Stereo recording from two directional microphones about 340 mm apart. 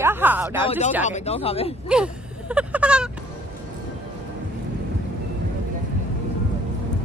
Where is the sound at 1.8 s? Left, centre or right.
Centre.